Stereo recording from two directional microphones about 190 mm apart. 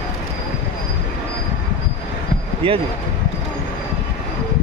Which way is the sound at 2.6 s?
30° right (ahead or behind).